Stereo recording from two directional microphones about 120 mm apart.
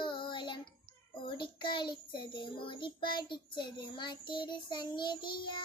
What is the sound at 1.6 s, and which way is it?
Child singing, 40° left (ahead or behind).